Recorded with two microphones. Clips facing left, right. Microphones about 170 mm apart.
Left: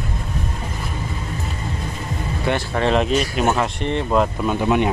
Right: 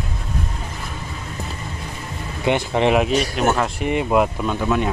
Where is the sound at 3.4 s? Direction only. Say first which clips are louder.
Even; centre (ahead or behind).